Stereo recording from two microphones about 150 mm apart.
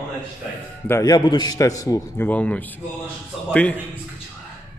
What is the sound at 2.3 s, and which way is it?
A man's voice, 10° left (ahead or behind).